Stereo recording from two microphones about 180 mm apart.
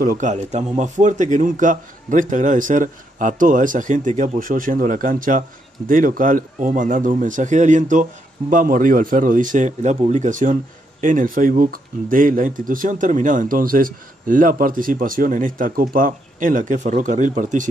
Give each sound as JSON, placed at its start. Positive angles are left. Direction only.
{"t": 0.0, "sound": "speech", "side_deg": -45}